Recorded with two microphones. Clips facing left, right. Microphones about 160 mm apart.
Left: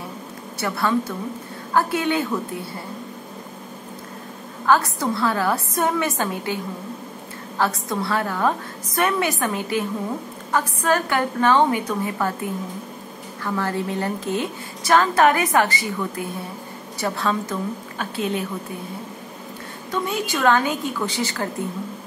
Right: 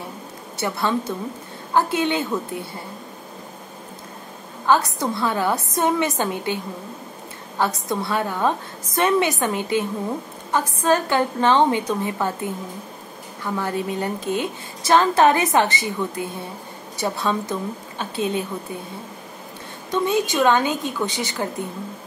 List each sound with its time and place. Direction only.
0.6 s a woman's voice: 20° right (ahead or behind)
4.6 s a woman's voice: 20° right (ahead or behind)
19.9 s a woman's voice: 20° right (ahead or behind)